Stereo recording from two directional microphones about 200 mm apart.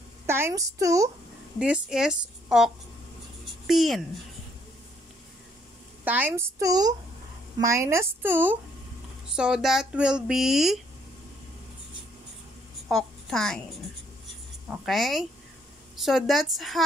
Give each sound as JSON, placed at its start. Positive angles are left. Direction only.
{"t": 0.3, "sound": "a woman's voice", "side_deg": -10}
{"t": 1.6, "sound": "speech", "side_deg": -5}
{"t": 6.0, "sound": "a woman's voice", "side_deg": -10}
{"t": 12.8, "sound": "a sound", "side_deg": 0}
{"t": 14.7, "sound": "a woman's voice", "side_deg": 0}